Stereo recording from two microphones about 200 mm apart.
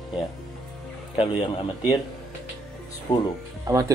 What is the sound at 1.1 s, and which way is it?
Speech, 25° left (ahead or behind).